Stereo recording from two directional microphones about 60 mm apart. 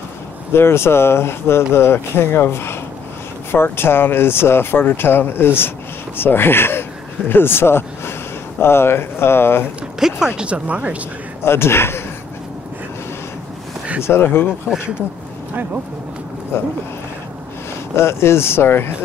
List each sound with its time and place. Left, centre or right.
0.5 s speech: left
9.9 s speech: centre
11.4 s speech: left
14.0 s speech: left
16.5 s speech: left
17.9 s speech: left